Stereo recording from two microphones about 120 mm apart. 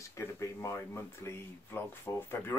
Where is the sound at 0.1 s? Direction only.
25° left (ahead or behind).